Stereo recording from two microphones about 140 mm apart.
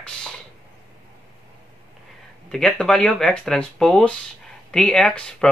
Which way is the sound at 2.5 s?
5° left (ahead or behind).